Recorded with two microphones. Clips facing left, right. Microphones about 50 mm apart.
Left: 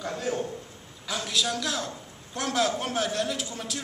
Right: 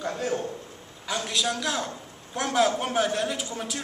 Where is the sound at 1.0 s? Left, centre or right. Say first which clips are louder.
Right 1 dB; centre.